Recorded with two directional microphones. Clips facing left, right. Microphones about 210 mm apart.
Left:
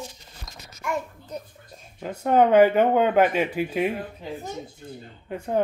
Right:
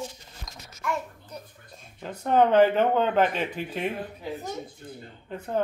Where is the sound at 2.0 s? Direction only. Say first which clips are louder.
Left 2 dB; 10° left (ahead or behind).